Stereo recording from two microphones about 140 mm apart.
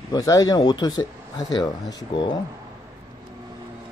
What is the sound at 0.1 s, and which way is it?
Speech, 25° left (ahead or behind).